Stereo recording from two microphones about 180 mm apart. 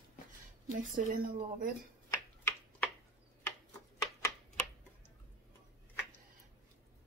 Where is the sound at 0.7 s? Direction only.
50° right (ahead or behind).